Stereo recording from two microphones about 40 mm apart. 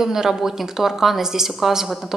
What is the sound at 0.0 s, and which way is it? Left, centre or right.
A woman's voice, centre.